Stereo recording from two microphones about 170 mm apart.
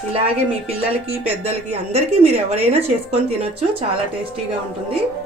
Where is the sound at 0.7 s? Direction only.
35° right (ahead or behind).